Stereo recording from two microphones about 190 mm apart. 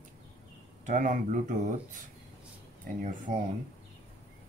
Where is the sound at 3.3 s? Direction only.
45° right (ahead or behind).